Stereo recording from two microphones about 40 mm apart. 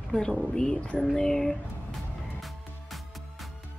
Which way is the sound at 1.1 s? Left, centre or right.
Centre.